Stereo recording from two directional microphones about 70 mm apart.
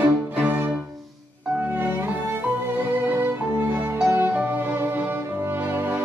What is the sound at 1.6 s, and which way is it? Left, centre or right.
Music, right.